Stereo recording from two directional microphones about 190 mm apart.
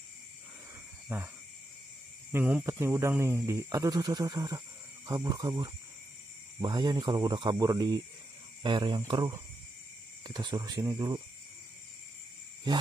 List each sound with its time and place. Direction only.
1.0 s speech: 10° right (ahead or behind)
2.3 s speech: 10° right (ahead or behind)